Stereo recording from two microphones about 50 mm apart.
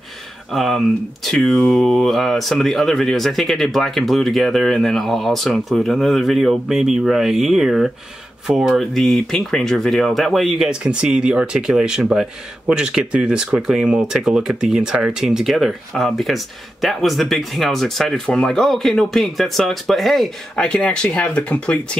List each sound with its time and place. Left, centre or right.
0.5 s speech: centre
8.9 s speech: centre
10.7 s speech: right
11.5 s speech: centre
20.5 s speech: left